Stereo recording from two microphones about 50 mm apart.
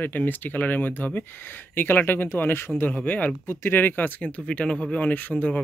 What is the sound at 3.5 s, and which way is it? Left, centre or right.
Speech, left.